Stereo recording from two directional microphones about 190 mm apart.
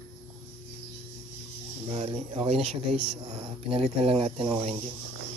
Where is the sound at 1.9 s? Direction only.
30° right (ahead or behind).